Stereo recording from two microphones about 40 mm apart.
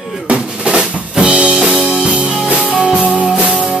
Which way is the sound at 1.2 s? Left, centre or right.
Right.